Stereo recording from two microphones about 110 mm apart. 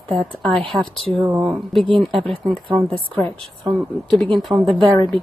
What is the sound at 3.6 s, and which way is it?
Speech, centre (ahead or behind).